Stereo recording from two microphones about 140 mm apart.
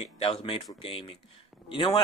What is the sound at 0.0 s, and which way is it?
Speech, 45° left (ahead or behind).